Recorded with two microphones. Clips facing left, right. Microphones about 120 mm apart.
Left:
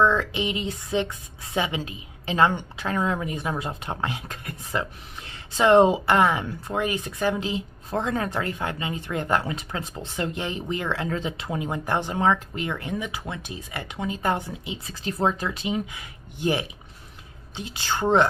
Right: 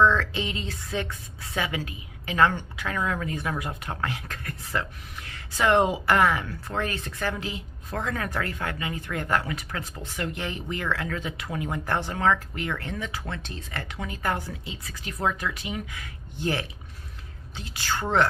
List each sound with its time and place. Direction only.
0.0 s speech: 15° left (ahead or behind)
15.0 s speech: 30° left (ahead or behind)